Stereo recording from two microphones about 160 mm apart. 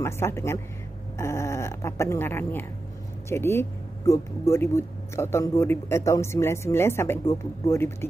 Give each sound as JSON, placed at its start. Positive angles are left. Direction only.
{"t": 0.0, "sound": "speech", "side_deg": 15}